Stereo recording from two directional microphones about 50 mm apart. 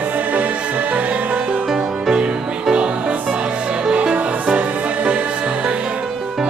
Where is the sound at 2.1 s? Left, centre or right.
Centre.